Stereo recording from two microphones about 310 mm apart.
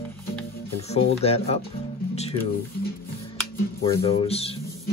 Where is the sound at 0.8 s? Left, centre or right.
Centre.